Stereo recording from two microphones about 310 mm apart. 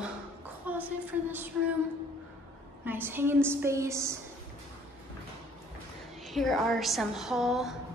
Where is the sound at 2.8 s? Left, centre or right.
Centre.